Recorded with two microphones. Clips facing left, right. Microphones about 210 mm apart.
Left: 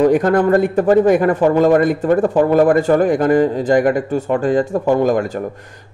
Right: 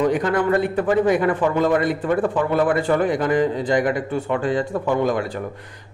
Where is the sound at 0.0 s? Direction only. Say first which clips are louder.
Left 6 dB; 45° left (ahead or behind).